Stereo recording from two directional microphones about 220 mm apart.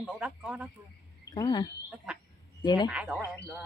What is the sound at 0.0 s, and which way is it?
Speech, 5° right (ahead or behind).